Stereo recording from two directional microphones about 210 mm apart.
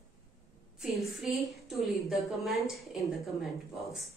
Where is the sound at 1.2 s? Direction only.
Centre (ahead or behind).